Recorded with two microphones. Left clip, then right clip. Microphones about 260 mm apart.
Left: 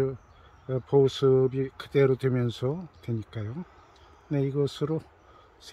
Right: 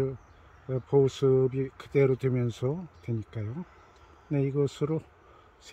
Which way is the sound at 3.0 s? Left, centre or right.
Left.